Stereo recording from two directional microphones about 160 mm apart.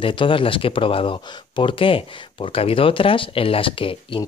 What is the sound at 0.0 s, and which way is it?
Speech, 30° left (ahead or behind).